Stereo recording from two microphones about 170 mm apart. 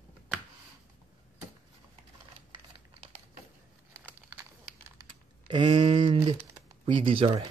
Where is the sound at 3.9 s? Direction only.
10° right (ahead or behind).